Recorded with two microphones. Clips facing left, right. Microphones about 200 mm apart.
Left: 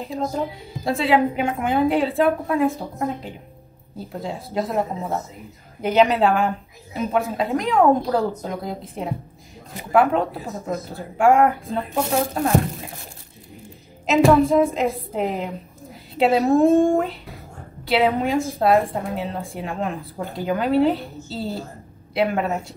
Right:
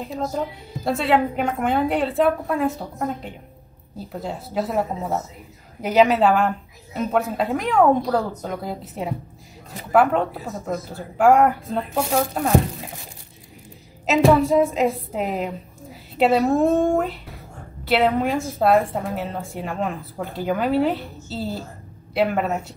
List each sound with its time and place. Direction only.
0.0 s a woman's voice: centre (ahead or behind)
5.9 s a woman's voice: centre (ahead or behind)
14.0 s music: centre (ahead or behind)
14.5 s a woman's voice: centre (ahead or behind)